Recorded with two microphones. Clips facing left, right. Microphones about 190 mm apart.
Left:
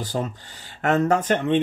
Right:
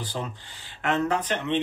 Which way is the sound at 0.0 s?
40° left (ahead or behind).